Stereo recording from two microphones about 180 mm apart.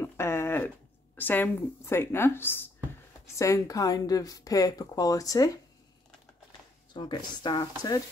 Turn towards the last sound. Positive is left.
turn(degrees=20)  # may be behind; listen again after turning